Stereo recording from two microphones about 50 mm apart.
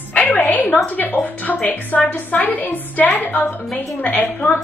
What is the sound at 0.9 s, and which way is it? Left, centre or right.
A woman's voice, left.